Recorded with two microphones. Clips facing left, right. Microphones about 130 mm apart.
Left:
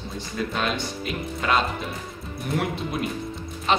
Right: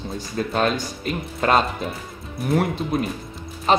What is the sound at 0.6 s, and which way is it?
Speech, 40° right (ahead or behind).